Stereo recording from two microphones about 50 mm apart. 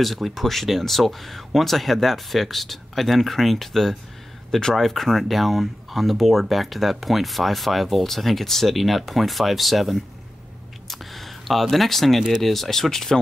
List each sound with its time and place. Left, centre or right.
0.0 s speech: centre
10.9 s a sound: centre
12.4 s speech: centre